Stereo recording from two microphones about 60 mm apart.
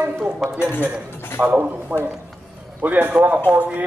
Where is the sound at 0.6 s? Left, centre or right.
Left.